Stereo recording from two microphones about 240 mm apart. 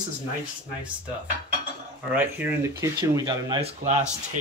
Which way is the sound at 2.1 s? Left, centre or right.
Centre.